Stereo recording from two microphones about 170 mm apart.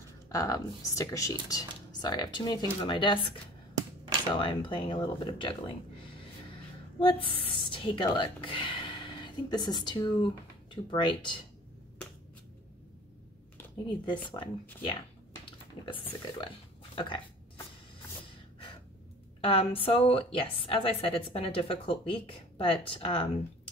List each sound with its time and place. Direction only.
0.3 s speech: 20° left (ahead or behind)
13.8 s speech: 25° left (ahead or behind)
15.8 s speech: 30° left (ahead or behind)
19.4 s a woman's voice: 30° left (ahead or behind)